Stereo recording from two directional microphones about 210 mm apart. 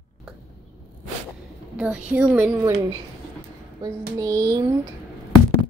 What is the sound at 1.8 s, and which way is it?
A woman's voice, 5° right (ahead or behind).